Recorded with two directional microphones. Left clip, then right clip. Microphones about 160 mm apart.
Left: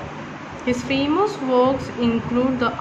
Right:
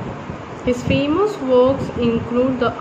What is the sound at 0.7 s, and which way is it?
Speech, 15° left (ahead or behind).